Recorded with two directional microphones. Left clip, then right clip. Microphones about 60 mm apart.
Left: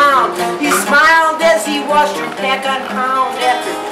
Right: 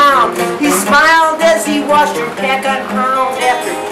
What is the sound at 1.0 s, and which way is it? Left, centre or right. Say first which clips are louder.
Music: right 1 dB; centre.